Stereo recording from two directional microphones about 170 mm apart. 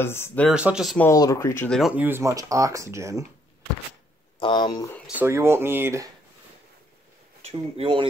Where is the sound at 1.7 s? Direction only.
5° right (ahead or behind).